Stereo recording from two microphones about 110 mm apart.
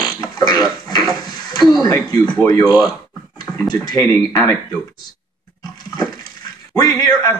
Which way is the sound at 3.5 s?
35° left (ahead or behind).